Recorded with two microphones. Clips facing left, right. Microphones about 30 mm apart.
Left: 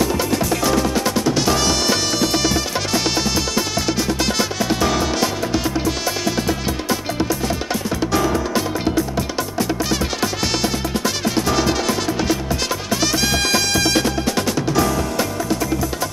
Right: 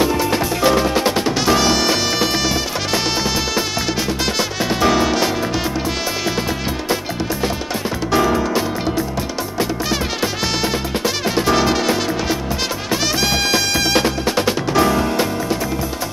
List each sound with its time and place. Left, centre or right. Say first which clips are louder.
0.3 s music: right 2 dB; right
1.3 s music: right 2 dB; centre
7.4 s music: right 1 dB; right
9.8 s music: right 1 dB; centre
12.9 s music: right 1 dB; centre
13.9 s music: right 2 dB; right